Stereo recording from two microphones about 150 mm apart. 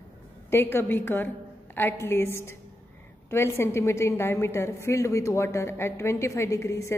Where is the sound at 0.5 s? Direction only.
15° left (ahead or behind).